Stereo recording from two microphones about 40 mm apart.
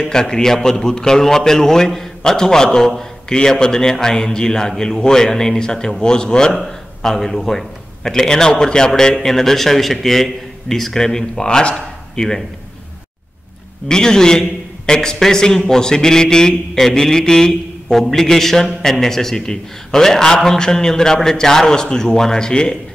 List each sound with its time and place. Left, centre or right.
0.1 s a man's voice: centre
6.5 s a man's voice: centre
11.7 s speech: centre
13.8 s a man's voice: centre